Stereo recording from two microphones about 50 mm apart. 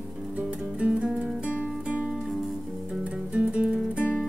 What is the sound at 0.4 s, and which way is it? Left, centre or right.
Music, right.